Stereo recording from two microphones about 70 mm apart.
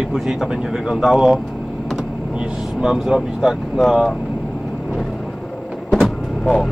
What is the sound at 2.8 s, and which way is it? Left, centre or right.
Speech, centre.